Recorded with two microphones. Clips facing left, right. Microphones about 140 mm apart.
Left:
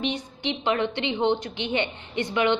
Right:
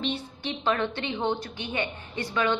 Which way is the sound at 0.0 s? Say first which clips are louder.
Left 3 dB; 15° left (ahead or behind).